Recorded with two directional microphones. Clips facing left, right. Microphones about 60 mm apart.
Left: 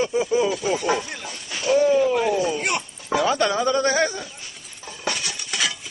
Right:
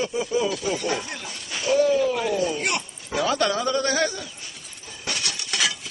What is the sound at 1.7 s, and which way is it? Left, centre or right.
Speech, centre.